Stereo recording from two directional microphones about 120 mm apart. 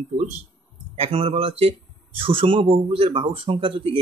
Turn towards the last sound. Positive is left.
turn(degrees=-45)  # may be behind; listen again after turning